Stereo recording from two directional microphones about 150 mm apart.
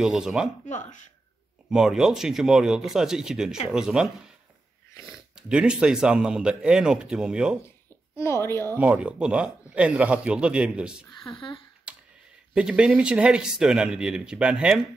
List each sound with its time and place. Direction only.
0.0 s speech: centre (ahead or behind)
0.7 s speech: 55° left (ahead or behind)
1.7 s speech: 5° right (ahead or behind)
5.3 s speech: 5° right (ahead or behind)
8.2 s a woman's voice: 15° left (ahead or behind)
8.7 s speech: 10° right (ahead or behind)
11.3 s speech: 35° left (ahead or behind)
11.9 s a sound: 5° right (ahead or behind)
12.5 s speech: 5° right (ahead or behind)